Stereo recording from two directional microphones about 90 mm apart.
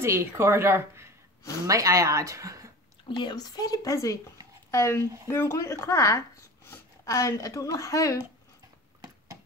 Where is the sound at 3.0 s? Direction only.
55° left (ahead or behind); by 8.1 s 40° left (ahead or behind).